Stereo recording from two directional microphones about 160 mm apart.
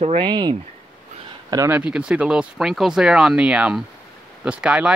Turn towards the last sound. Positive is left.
turn(degrees=-5)  # may be behind; listen again after turning